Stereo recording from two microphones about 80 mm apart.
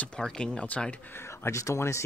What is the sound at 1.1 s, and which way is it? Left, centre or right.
Speech, left.